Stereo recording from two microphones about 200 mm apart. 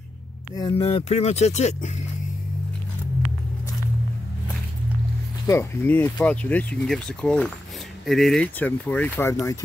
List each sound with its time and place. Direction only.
0.6 s speech: 25° left (ahead or behind)
5.5 s speech: 10° left (ahead or behind)